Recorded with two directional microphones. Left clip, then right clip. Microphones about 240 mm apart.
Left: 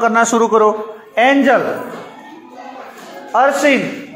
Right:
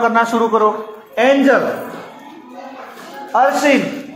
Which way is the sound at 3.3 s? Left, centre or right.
Left.